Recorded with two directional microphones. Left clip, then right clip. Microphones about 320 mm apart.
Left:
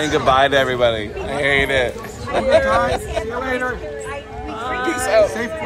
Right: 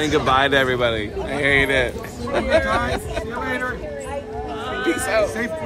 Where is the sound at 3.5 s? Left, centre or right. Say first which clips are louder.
Left 2 dB; centre.